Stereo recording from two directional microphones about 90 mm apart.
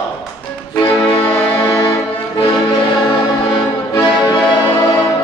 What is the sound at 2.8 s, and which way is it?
Music, 60° left (ahead or behind).